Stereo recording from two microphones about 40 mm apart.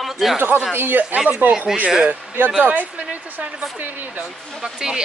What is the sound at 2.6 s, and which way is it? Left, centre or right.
Speech, right.